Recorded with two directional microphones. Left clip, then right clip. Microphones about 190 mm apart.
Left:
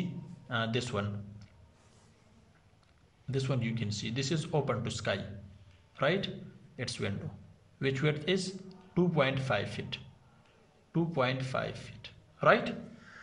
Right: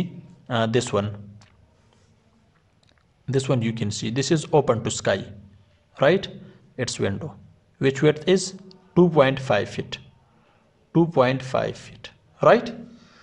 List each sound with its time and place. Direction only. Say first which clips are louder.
0.5 s a man's voice: right 11 dB; 40° right (ahead or behind)
3.3 s a man's voice: right 11 dB; 40° right (ahead or behind)